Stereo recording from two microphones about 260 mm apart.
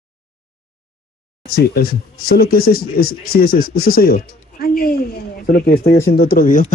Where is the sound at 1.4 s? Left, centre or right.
Left.